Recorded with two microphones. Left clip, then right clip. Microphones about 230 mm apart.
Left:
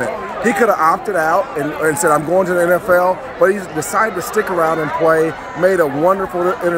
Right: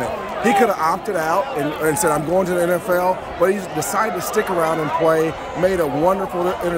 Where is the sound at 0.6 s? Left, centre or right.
Centre.